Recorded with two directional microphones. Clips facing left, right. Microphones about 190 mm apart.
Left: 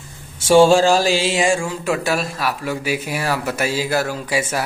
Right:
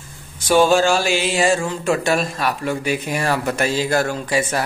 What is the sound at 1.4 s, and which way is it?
A man's voice, 10° left (ahead or behind).